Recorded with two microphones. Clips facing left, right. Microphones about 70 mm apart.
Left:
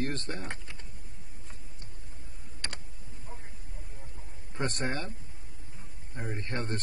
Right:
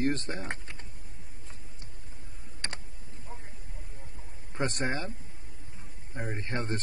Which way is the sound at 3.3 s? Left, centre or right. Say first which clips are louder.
Right 2 dB; centre.